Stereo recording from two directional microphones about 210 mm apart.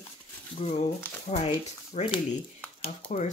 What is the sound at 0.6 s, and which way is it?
Speech, 30° left (ahead or behind).